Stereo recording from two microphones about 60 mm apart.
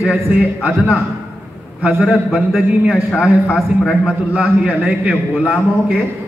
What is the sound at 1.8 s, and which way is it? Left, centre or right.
A man's voice, centre.